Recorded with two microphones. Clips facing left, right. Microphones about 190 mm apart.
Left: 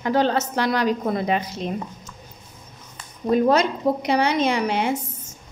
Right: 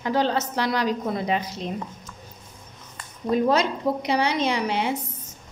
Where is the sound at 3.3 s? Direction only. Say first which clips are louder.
Left 3 dB; 50° left (ahead or behind).